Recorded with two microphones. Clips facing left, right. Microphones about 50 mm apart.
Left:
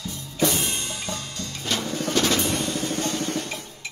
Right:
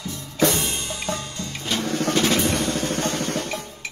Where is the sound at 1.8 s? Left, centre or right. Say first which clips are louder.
Right 4 dB; right.